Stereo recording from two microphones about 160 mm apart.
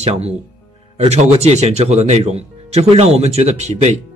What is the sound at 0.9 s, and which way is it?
Speech, 40° right (ahead or behind).